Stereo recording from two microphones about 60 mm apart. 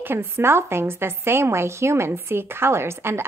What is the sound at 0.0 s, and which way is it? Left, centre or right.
A woman's voice, right.